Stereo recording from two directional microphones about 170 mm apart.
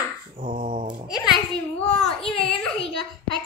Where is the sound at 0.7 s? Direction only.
35° right (ahead or behind).